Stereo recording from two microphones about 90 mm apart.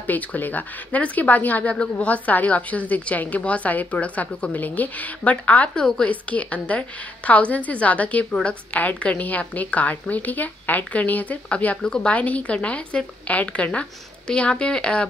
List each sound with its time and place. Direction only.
0.0 s a woman's voice: 20° left (ahead or behind)